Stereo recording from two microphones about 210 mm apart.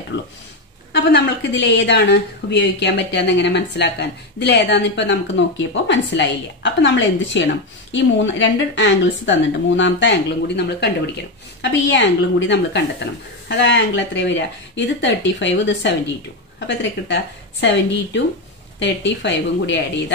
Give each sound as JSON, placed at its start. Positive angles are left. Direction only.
{"t": 0.9, "sound": "speech", "side_deg": 55}